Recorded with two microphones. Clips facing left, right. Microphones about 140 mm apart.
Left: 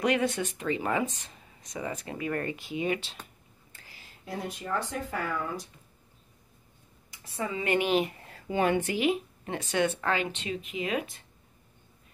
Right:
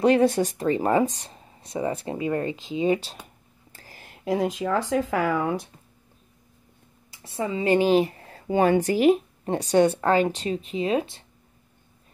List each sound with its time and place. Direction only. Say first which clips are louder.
0.0 s speech: right 8 dB; 35° right (ahead or behind)
3.2 s a sound: right 2 dB; 10° right (ahead or behind)
3.7 s whispering: right 7 dB; 45° right (ahead or behind)
4.1 s speech: right 12 dB; 90° right
7.1 s speech: right 5 dB; 25° right (ahead or behind)